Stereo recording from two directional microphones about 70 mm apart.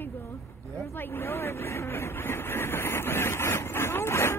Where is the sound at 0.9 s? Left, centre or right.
Left.